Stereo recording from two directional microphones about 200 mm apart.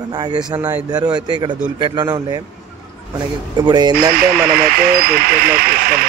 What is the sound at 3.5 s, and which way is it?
Speech, 20° right (ahead or behind).